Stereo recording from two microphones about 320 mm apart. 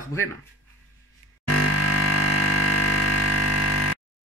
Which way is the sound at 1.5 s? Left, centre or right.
Left.